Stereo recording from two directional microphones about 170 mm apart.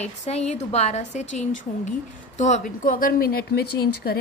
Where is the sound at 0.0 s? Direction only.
40° left (ahead or behind).